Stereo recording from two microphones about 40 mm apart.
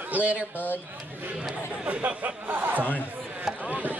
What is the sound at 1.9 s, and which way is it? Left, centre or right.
Speech, right.